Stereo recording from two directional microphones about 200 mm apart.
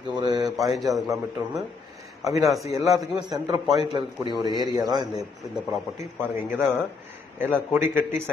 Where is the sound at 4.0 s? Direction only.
20° right (ahead or behind).